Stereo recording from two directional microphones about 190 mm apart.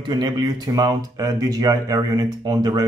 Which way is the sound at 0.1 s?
20° right (ahead or behind).